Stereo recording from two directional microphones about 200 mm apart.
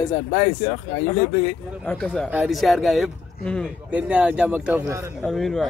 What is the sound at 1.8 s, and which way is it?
Speech, centre (ahead or behind).